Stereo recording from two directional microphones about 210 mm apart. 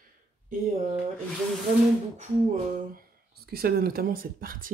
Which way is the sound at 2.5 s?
40° right (ahead or behind).